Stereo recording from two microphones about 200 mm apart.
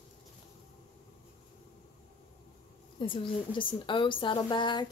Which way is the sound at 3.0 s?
25° left (ahead or behind).